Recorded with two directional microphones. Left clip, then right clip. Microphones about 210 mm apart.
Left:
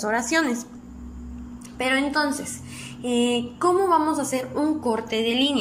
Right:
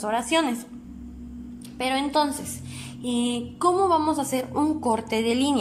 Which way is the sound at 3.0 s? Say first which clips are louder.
Left 5 dB; 20° right (ahead or behind).